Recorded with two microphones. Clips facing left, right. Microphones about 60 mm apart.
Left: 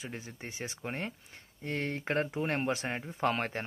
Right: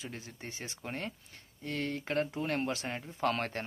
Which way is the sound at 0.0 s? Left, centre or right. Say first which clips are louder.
Left 2 dB; left.